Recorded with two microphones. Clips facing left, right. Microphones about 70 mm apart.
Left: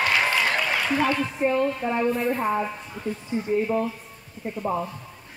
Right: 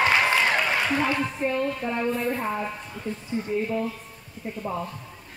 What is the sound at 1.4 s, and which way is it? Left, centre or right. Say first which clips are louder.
A woman's voice: left 7 dB; centre.